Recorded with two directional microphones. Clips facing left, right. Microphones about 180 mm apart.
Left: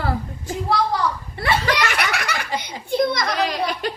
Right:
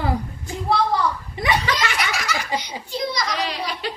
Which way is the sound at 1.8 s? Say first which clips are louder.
Left 2 dB; 65° left (ahead or behind).